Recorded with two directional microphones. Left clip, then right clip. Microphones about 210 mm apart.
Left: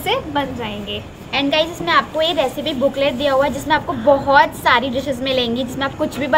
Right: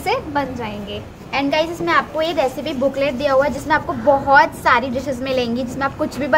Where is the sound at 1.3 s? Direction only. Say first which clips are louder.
Left 1 dB; 15° right (ahead or behind).